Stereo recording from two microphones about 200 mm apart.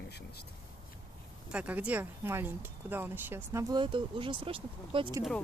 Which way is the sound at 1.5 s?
5° right (ahead or behind).